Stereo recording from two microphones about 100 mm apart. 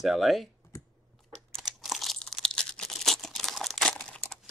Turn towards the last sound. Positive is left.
turn(degrees=10)  # may be behind; listen again after turning